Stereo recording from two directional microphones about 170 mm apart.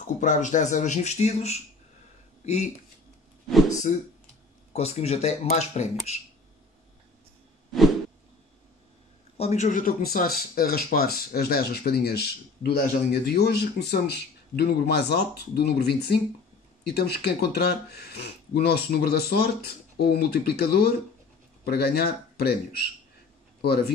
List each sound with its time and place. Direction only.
0.0 s speech: 45° left (ahead or behind)
4.7 s speech: 40° left (ahead or behind)
9.4 s speech: 40° left (ahead or behind)
10.1 s speech: 60° left (ahead or behind)